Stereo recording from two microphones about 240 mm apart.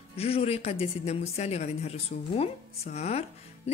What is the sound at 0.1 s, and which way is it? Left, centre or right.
Speech, left.